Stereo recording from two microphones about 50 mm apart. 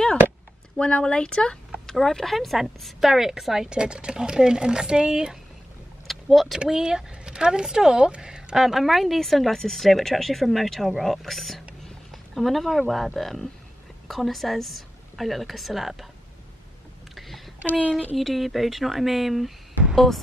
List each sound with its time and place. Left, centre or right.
0.7 s a woman's voice: centre
6.0 s vehicle: centre
6.6 s a woman's voice: centre
17.1 s a sound: centre
17.6 s speech: right
18.1 s speech: centre